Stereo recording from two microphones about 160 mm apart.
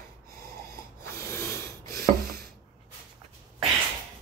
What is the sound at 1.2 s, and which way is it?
Snort, 15° left (ahead or behind).